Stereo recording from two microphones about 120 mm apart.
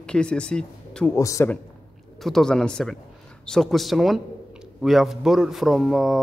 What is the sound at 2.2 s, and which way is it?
Speech, 5° left (ahead or behind).